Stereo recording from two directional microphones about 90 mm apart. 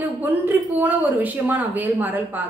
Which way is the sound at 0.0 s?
20° right (ahead or behind).